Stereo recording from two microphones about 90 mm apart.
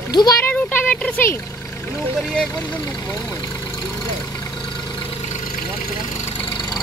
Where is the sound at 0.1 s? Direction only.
50° left (ahead or behind).